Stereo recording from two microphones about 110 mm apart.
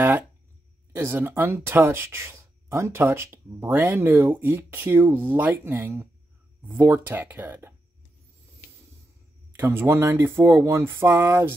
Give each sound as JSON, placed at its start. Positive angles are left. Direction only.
{"t": 0.9, "sound": "speech", "side_deg": -25}
{"t": 9.6, "sound": "speech", "side_deg": -25}